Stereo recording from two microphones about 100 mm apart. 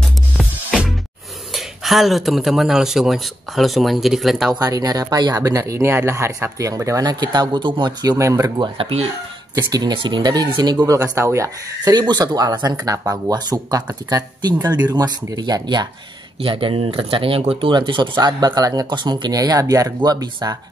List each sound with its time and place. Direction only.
1.5 s speech: centre (ahead or behind)
4.6 s speech: 40° right (ahead or behind)
8.5 s speech: 65° right (ahead or behind)
9.6 s speech: 45° right (ahead or behind)
10.9 s speech: 30° right (ahead or behind)
11.9 s speech: 45° right (ahead or behind)
16.3 s speech: 65° right (ahead or behind); by 20.5 s 40° right (ahead or behind)